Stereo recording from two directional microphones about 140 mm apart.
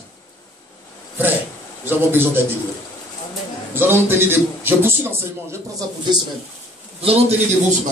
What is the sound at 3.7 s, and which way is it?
A man's voice, 15° right (ahead or behind).